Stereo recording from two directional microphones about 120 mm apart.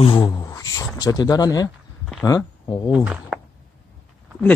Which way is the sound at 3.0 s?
10° right (ahead or behind).